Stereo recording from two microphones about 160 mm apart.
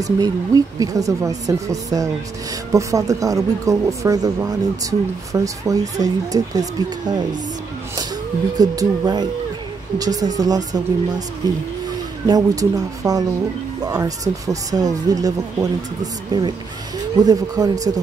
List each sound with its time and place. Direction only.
0.2 s speech: 20° right (ahead or behind)
8.5 s speech: 25° right (ahead or behind)